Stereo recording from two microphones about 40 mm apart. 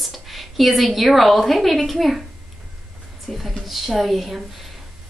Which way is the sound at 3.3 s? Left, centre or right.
Centre.